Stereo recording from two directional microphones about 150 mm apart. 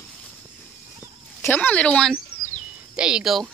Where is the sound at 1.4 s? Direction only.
10° left (ahead or behind).